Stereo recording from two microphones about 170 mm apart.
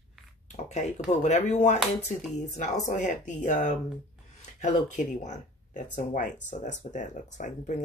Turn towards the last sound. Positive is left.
turn(degrees=45)  # may be behind; listen again after turning